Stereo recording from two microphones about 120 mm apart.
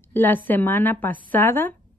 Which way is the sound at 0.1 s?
15° left (ahead or behind).